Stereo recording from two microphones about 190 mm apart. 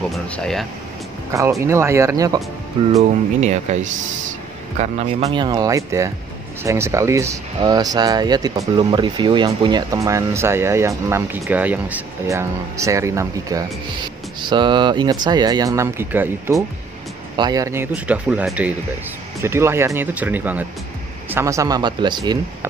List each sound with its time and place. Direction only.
0.1 s speech: centre (ahead or behind)
1.3 s speech: 15° right (ahead or behind)
3.3 s speech: 35° right (ahead or behind); by 22.7 s 20° right (ahead or behind)